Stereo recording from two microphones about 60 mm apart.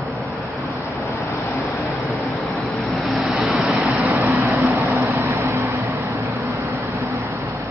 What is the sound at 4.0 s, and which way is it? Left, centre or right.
Vehicle, right.